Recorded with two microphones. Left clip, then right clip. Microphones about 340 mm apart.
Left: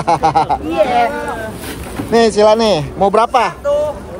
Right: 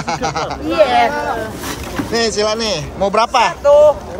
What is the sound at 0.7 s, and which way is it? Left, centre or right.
Speech, right.